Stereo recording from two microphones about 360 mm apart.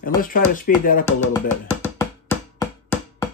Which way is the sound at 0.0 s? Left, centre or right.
Left.